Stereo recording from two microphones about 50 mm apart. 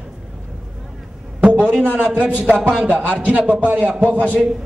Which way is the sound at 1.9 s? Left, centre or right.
Right.